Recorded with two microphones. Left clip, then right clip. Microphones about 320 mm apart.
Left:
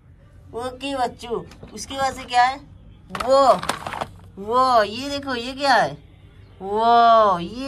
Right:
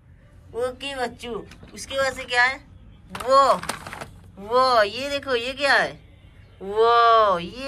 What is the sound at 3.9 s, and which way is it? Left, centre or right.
Speech, centre.